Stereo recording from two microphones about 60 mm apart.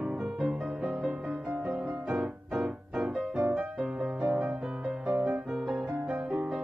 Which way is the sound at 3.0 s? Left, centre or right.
Centre.